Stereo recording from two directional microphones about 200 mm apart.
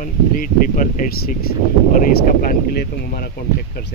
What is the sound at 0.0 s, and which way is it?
Speech, 40° left (ahead or behind).